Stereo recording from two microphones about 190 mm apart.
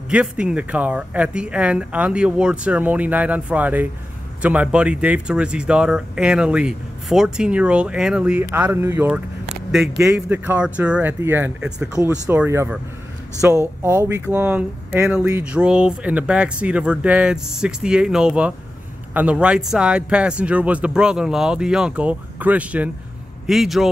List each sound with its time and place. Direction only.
0.1 s a man's voice: 5° right (ahead or behind)